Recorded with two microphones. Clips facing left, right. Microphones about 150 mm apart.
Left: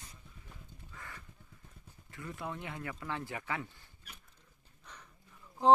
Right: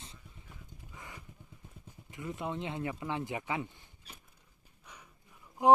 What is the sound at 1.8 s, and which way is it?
Speech, 20° right (ahead or behind).